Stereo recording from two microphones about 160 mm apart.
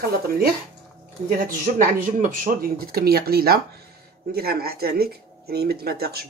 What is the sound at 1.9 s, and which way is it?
Speech, 55° right (ahead or behind).